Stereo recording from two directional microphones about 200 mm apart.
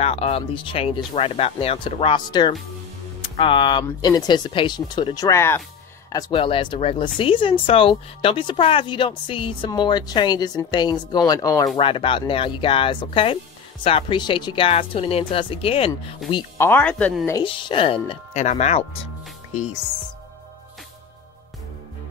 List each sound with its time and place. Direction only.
0.0 s speech: 30° left (ahead or behind)
16.6 s speech: 10° left (ahead or behind)
17.3 s speech: 25° left (ahead or behind)